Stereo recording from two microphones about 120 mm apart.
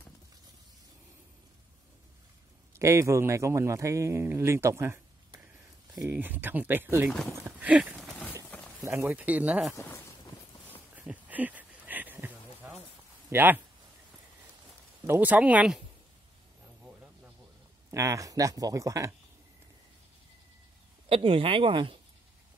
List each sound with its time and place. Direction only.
2.8 s speech: 25° right (ahead or behind)
7.3 s horse: 15° right (ahead or behind)
8.5 s a sound: 10° left (ahead or behind)
8.8 s speech: 20° right (ahead or behind)
9.8 s a sound: 20° left (ahead or behind)
11.0 s a sound: 10° right (ahead or behind)
13.3 s speech: 15° right (ahead or behind)
15.0 s speech: 15° right (ahead or behind)
17.9 s speech: 25° right (ahead or behind)
21.1 s speech: 50° right (ahead or behind)